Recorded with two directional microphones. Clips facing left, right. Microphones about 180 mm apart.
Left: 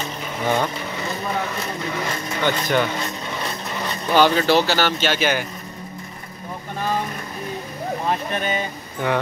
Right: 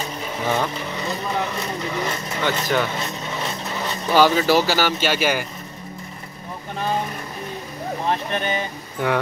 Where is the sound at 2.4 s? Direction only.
Centre (ahead or behind).